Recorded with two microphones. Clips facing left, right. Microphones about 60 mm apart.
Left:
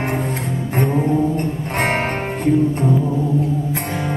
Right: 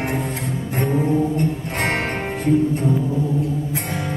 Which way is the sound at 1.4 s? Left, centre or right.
Left.